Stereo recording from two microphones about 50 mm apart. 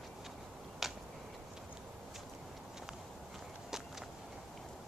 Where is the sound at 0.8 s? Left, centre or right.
Centre.